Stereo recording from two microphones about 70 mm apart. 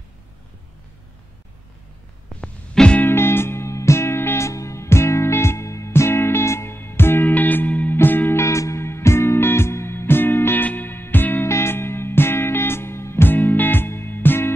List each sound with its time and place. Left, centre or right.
2.4 s music: centre
3.0 s music: left
4.5 s music: left
8.4 s music: left
11.4 s music: left